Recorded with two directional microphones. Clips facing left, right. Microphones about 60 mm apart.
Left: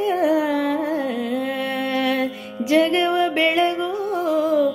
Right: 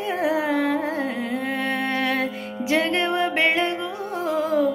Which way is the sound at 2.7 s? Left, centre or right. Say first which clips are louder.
Left 4 dB; right.